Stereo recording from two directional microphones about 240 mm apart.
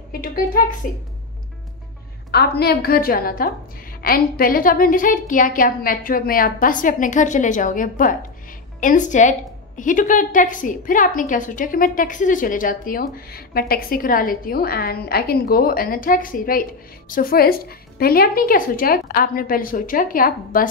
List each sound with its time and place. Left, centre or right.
0.1 s a woman's voice: left
2.3 s a woman's voice: left